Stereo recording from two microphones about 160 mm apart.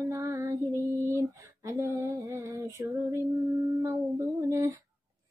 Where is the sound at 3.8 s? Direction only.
15° right (ahead or behind).